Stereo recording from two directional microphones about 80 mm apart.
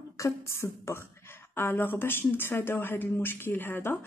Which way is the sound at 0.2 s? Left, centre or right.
Left.